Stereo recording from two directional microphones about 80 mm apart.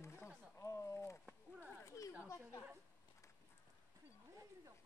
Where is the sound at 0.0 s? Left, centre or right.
Left.